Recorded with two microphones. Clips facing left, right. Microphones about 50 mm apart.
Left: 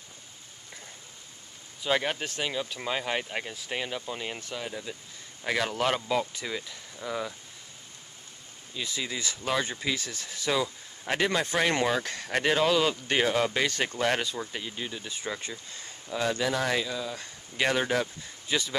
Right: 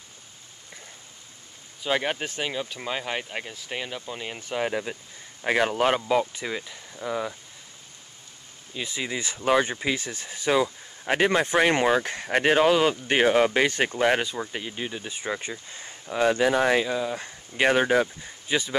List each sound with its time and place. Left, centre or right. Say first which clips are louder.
1.8 s speech: right 2 dB; centre
4.9 s speech: right 5 dB; right
5.4 s speech: right 5 dB; right
8.7 s speech: right 3 dB; right